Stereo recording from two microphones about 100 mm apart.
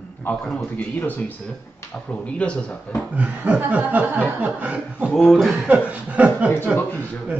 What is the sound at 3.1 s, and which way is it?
Chuckle, 15° right (ahead or behind).